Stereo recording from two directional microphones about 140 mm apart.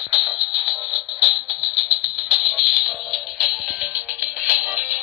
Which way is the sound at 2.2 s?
5° right (ahead or behind).